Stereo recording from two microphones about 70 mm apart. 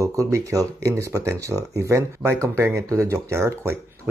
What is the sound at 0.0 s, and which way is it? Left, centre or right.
Speech, right.